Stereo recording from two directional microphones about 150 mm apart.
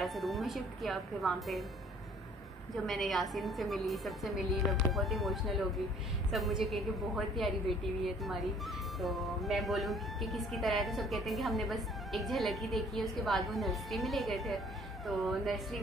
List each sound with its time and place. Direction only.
0.0 s a woman's voice: centre (ahead or behind)
2.7 s a woman's voice: centre (ahead or behind)